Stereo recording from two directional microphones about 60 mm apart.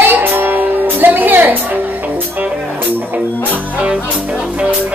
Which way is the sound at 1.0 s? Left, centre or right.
Right.